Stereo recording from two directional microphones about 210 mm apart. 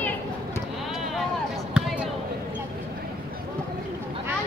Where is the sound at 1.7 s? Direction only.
5° right (ahead or behind).